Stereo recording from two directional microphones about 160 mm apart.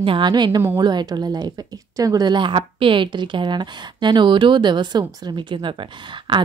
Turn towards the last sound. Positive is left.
turn(degrees=-30)  # may be behind; listen again after turning